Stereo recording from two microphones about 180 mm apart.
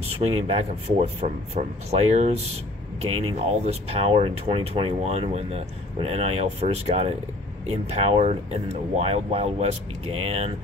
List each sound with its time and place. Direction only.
0.2 s speech: 35° right (ahead or behind)